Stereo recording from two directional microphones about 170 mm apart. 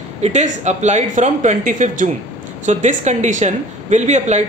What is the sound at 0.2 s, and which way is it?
Speech, 45° right (ahead or behind).